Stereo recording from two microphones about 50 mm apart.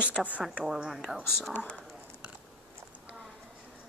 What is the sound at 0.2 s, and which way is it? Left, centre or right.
Speech, right.